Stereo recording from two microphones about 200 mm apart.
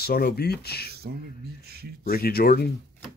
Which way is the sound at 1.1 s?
55° right (ahead or behind).